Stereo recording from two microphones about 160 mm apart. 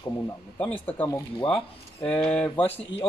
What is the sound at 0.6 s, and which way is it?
Speech, 10° left (ahead or behind).